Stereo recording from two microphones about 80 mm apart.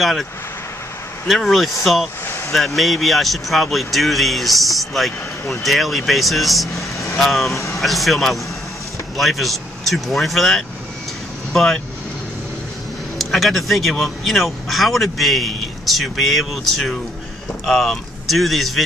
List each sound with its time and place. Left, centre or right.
0.0 s speech: centre
2.2 s a sound: left
2.5 s speech: centre
13.2 s speech: centre